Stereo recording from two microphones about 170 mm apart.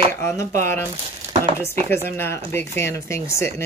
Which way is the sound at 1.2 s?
40° right (ahead or behind).